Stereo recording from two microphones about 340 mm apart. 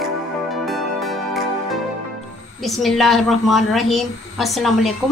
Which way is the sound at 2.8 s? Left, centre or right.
Centre.